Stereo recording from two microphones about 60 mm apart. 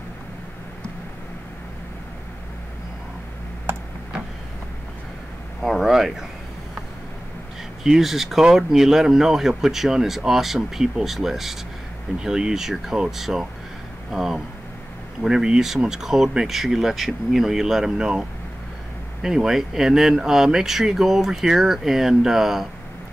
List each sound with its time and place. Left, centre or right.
3.7 s tick-tock: right
5.6 s speech: centre
7.8 s speech: centre
19.2 s speech: centre